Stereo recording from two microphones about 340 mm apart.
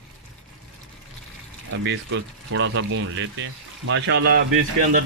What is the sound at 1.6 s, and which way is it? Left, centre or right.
Speech, right.